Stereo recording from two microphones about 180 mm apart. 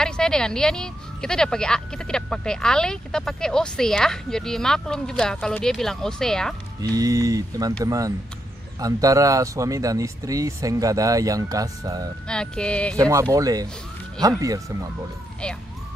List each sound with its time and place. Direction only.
0.0 s a woman's voice: 5° left (ahead or behind)
6.8 s speech: 20° right (ahead or behind)
12.3 s a woman's voice: 5° left (ahead or behind)
12.9 s speech: 20° right (ahead or behind)
15.4 s a woman's voice: 5° left (ahead or behind)